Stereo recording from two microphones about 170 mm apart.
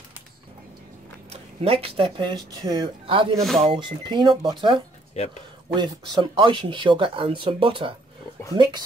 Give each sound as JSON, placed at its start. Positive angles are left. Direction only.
{"t": 1.3, "sound": "speech", "side_deg": -35}
{"t": 3.3, "sound": "speech", "side_deg": 0}
{"t": 3.6, "sound": "speech", "side_deg": -30}
{"t": 5.2, "sound": "a man's voice", "side_deg": 40}
{"t": 5.8, "sound": "speech", "side_deg": -30}